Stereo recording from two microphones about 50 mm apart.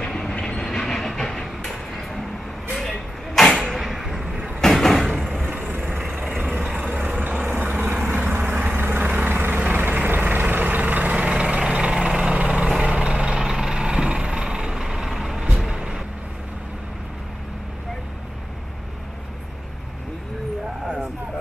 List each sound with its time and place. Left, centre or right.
0.0 s train: centre
2.7 s vehicle: centre
3.6 s a sound: centre
4.6 s a sound: centre
6.1 s vehicle: right
12.4 s lawn mower: right
12.6 s vehicle: centre